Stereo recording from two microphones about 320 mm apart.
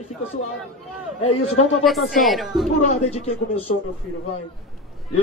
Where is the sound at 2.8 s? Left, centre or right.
Left.